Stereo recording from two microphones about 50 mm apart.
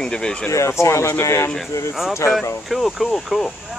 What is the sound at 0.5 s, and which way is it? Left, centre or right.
Speech, left.